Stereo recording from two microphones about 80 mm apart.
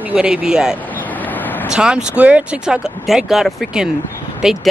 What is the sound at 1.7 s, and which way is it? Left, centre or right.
Speech, centre.